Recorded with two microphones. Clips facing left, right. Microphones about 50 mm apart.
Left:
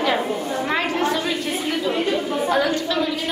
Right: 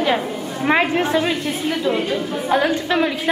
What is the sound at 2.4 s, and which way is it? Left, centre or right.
Speech, right.